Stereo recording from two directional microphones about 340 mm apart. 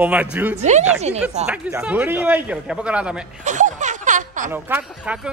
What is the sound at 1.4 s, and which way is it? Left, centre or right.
Speech, centre.